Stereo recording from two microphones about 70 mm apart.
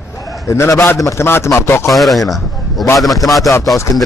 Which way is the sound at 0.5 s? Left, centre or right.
Left.